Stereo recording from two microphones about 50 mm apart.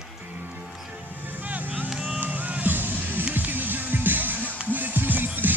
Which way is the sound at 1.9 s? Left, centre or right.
Centre.